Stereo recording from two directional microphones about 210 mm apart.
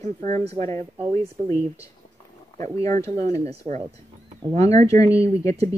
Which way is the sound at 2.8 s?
15° left (ahead or behind).